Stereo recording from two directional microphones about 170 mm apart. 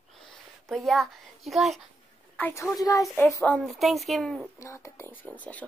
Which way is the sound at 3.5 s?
Centre (ahead or behind).